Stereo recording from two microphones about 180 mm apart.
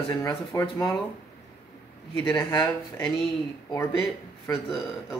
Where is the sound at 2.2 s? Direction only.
20° left (ahead or behind).